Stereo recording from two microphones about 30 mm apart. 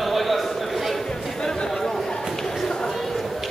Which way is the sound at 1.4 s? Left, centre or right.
Left.